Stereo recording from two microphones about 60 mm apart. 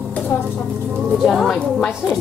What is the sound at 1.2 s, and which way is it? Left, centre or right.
Speech, centre.